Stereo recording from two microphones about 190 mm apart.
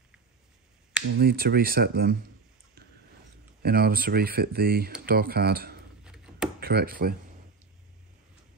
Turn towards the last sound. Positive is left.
turn(degrees=-50)  # may be behind; listen again after turning